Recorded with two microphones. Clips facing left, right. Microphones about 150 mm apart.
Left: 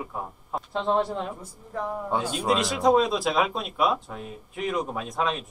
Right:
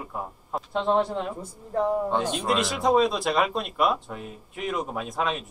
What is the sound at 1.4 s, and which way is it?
Speech, 35° right (ahead or behind).